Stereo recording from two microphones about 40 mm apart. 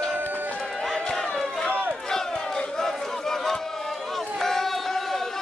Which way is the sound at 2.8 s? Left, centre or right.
Centre.